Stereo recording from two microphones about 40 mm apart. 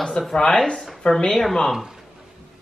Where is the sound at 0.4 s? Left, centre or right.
Left.